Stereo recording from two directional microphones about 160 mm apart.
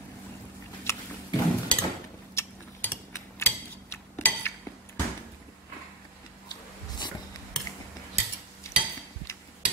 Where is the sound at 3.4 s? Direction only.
15° left (ahead or behind).